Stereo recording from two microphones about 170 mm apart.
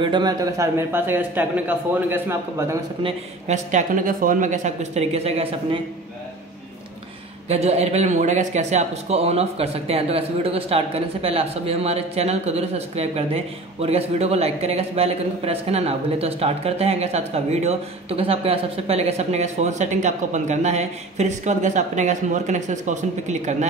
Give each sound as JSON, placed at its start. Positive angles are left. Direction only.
{"t": 0.0, "sound": "a man's voice", "side_deg": -25}
{"t": 3.0, "sound": "speech", "side_deg": -30}
{"t": 3.5, "sound": "speech", "side_deg": -50}
{"t": 7.4, "sound": "speech", "side_deg": -40}